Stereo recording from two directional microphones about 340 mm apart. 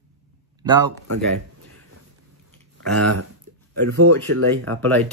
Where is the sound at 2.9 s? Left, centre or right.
Right.